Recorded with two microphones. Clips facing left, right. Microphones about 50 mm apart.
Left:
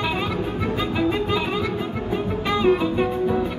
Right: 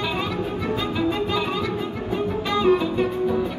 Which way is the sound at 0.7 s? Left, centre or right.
Centre.